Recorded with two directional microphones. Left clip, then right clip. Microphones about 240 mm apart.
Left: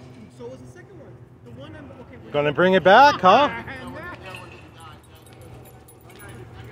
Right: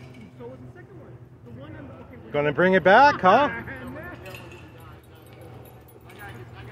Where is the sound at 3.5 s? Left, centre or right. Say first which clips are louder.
Left 2 dB; left.